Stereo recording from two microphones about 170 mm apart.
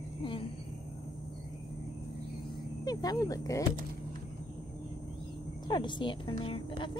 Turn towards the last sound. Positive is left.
turn(degrees=30)  # may be behind; listen again after turning